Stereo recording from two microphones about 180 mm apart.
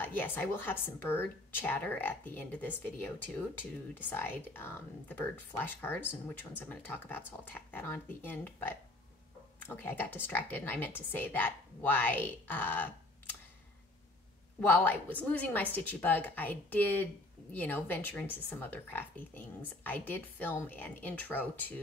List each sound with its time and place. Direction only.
0.0 s a woman's voice: 10° left (ahead or behind)
14.7 s a woman's voice: 10° left (ahead or behind)